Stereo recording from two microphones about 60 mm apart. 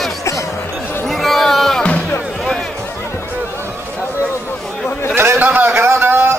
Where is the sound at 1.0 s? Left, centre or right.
Centre.